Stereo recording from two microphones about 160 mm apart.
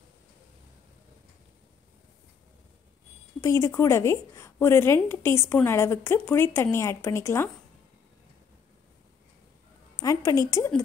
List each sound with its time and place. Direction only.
3.3 s speech: 20° left (ahead or behind)
9.9 s music: 20° left (ahead or behind)